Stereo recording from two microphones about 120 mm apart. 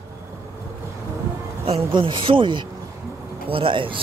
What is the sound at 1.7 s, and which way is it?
Speech, 45° right (ahead or behind).